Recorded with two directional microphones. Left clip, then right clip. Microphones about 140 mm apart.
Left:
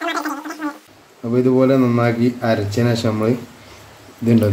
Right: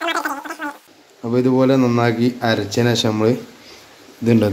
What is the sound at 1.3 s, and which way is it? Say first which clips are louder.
Speech: left 1 dB; 30° right (ahead or behind).